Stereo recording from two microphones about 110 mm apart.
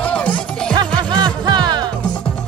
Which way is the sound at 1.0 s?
40° right (ahead or behind).